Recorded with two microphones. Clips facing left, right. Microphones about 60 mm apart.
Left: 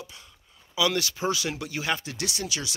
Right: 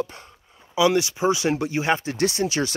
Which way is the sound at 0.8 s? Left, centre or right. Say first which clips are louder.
Right 7 dB; right.